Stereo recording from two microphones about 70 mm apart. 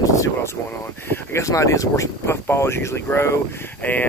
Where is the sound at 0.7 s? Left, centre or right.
Left.